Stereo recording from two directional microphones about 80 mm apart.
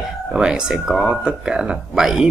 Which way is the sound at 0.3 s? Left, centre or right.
Centre.